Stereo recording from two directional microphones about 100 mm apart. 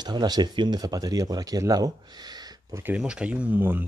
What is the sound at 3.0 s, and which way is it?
Speech, 10° right (ahead or behind).